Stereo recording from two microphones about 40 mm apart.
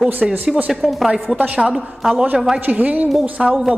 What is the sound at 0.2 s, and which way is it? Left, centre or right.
Speech, centre.